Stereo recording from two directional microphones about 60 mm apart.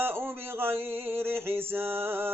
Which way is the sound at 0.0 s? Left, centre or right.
Right.